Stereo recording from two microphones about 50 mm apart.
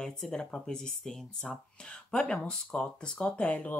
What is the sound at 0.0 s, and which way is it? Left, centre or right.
Speech, centre.